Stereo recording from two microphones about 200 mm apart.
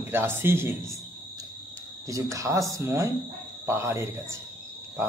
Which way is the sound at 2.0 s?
15° right (ahead or behind).